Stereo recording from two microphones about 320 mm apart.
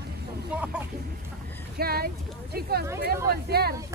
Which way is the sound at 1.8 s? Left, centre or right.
Right.